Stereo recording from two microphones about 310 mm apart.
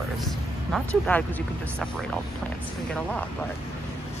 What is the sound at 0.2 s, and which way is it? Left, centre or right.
Speech, centre.